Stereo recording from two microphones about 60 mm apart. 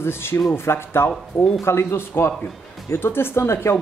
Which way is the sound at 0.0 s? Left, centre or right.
Left.